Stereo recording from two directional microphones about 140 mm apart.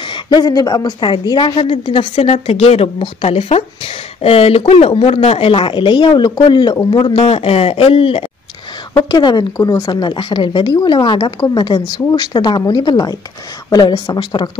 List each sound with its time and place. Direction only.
0.1 s a woman's voice: 30° left (ahead or behind)
9.8 s a woman's voice: 35° left (ahead or behind)